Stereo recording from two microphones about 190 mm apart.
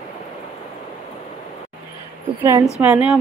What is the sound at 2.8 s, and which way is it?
Speech, 10° right (ahead or behind).